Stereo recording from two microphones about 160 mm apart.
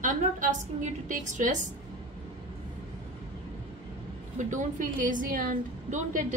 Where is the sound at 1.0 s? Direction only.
50° right (ahead or behind).